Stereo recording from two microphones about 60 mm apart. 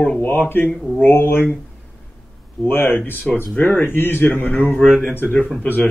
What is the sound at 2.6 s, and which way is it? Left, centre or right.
Speech, left.